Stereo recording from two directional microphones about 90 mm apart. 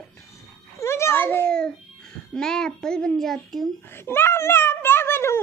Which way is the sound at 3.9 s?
25° left (ahead or behind).